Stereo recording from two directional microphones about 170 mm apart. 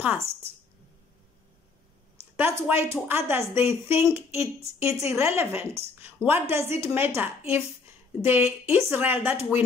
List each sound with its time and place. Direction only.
2.3 s a woman's voice: 15° right (ahead or behind)